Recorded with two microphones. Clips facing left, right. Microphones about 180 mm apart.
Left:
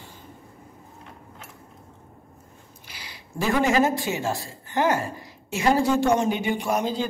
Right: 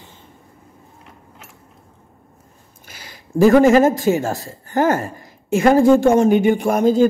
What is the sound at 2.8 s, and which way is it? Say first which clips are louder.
A man's voice: right 4 dB; 45° right (ahead or behind).